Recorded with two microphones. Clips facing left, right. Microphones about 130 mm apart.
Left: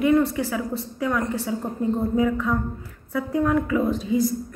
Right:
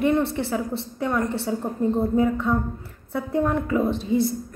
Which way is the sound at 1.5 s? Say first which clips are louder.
Right 1 dB; 35° right (ahead or behind).